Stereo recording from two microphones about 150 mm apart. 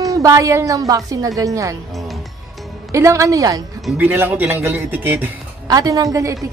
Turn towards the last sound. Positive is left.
turn(degrees=-20)  # may be behind; listen again after turning